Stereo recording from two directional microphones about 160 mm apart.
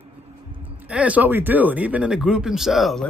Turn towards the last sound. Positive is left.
turn(degrees=0)  # may be behind; listen again after turning